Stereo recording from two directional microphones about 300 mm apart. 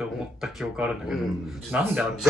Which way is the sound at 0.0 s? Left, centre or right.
Centre.